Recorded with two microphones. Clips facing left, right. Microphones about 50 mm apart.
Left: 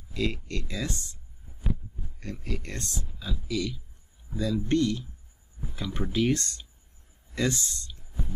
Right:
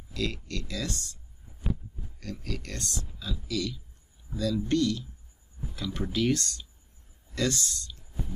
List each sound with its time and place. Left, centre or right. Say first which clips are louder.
0.1 s speech: left 2 dB; left